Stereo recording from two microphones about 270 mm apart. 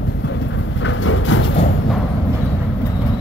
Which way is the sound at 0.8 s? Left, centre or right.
Left.